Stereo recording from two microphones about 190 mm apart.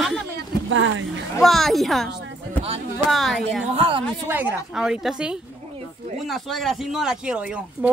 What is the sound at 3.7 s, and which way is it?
Speech, 30° right (ahead or behind).